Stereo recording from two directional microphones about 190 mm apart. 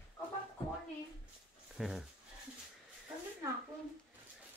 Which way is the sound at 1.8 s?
Centre (ahead or behind).